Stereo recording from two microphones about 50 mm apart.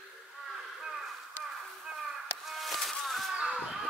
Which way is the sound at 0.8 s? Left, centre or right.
Centre.